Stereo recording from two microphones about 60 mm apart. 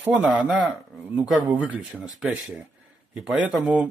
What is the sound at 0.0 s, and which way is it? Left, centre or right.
Speech, right.